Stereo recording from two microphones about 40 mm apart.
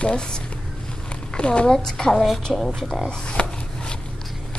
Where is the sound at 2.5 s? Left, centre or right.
Centre.